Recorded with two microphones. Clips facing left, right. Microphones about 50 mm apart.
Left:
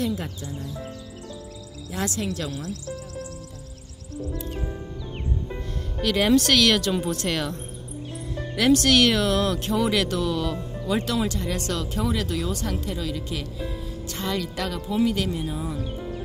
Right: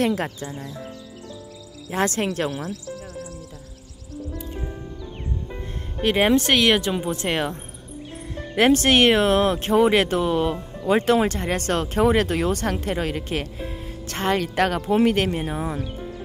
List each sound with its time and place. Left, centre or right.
0.0 s speech: right
1.9 s speech: right
5.9 s speech: right
8.5 s speech: right